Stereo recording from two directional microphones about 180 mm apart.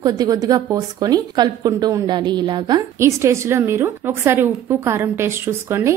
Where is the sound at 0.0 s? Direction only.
20° right (ahead or behind).